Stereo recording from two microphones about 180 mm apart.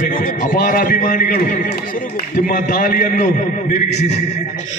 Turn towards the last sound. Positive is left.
turn(degrees=40)  # may be behind; listen again after turning